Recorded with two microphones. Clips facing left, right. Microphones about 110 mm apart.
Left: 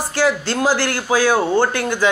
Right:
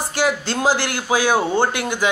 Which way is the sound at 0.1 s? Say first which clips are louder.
Left 2 dB; 20° right (ahead or behind).